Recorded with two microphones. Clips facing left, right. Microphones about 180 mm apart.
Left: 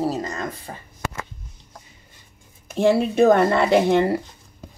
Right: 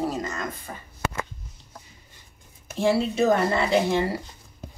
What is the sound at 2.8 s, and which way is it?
Speech, 60° left (ahead or behind).